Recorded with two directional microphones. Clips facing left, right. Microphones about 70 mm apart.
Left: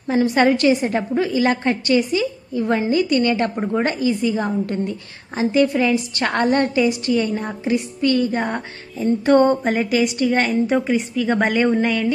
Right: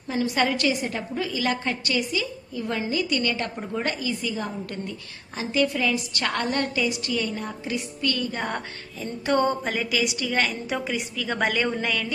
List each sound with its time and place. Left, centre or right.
0.1 s a woman's voice: left
9.2 s a woman's voice: left